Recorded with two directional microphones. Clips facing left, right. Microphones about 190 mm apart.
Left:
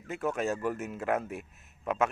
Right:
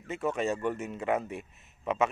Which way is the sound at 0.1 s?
Centre (ahead or behind).